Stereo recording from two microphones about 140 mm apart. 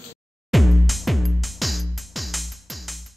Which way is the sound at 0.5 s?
Centre (ahead or behind).